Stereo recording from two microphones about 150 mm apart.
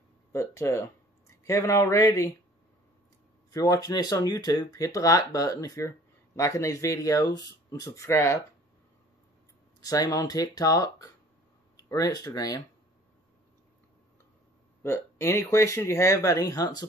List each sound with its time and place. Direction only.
0.3 s speech: 20° left (ahead or behind)
3.5 s speech: 25° left (ahead or behind)
9.8 s speech: 25° left (ahead or behind)
14.8 s speech: 15° left (ahead or behind)